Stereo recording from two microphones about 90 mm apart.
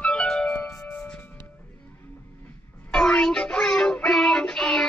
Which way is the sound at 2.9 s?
10° left (ahead or behind).